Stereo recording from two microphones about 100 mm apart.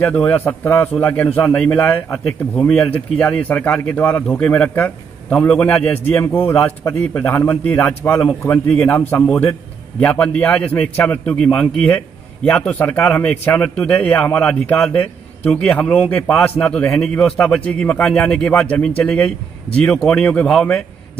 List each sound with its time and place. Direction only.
0.0 s a man's voice: 20° left (ahead or behind)
9.9 s a man's voice: 15° left (ahead or behind)